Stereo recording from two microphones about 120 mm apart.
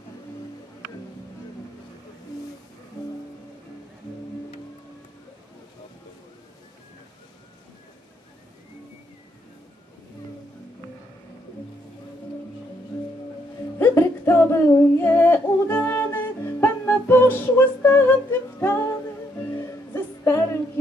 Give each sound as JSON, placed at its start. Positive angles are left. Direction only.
{"t": 13.7, "sound": "music", "side_deg": 20}